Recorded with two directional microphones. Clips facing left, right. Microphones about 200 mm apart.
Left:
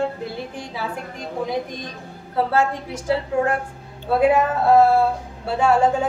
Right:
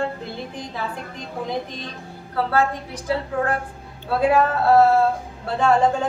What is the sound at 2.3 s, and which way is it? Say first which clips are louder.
Speech: left 1 dB; 25° left (ahead or behind).